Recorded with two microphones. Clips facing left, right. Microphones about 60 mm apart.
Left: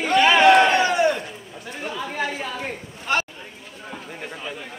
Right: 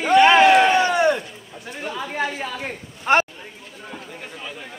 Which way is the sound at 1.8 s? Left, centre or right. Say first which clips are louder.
Right 1 dB; centre.